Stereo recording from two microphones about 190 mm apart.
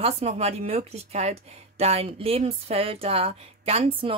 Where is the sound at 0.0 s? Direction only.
30° right (ahead or behind).